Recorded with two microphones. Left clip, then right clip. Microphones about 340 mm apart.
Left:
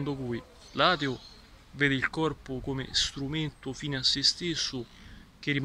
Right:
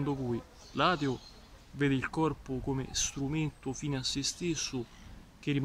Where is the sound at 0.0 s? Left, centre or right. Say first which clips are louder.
Even; centre.